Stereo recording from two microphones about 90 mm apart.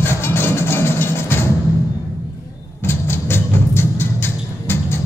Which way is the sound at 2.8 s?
25° left (ahead or behind).